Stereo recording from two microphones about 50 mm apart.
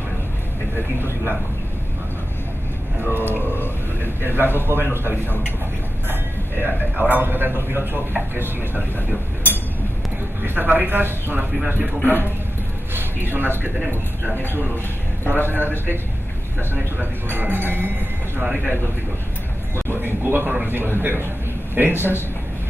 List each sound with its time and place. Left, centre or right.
3.1 s a man's voice: right
3.3 s a sound: left
4.2 s a man's voice: right
6.6 s a man's voice: right
10.4 s a man's voice: right
12.0 s speech: left
12.9 s speech: right
15.2 s a man's voice: right
19.9 s a man's voice: right